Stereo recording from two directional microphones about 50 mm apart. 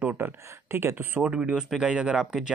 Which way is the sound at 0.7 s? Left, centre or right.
Right.